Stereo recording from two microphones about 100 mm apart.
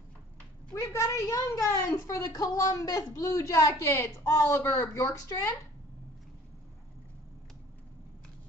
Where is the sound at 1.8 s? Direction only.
35° left (ahead or behind).